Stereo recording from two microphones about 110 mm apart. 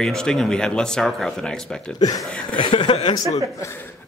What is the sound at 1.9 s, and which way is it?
Speech, 35° left (ahead or behind).